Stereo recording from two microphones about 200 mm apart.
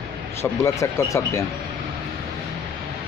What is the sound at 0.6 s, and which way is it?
Speech, 15° left (ahead or behind).